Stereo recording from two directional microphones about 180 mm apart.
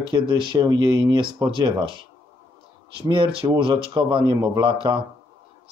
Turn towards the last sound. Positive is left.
turn(degrees=-25)  # may be behind; listen again after turning